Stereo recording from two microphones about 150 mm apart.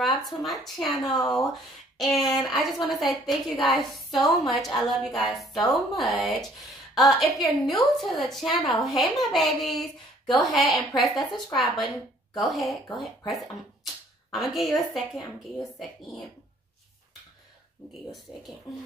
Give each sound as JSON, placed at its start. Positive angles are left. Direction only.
{"t": 0.2, "sound": "a woman's voice", "side_deg": 0}
{"t": 1.0, "sound": "speech", "side_deg": 25}
{"t": 2.0, "sound": "a woman's voice", "side_deg": 0}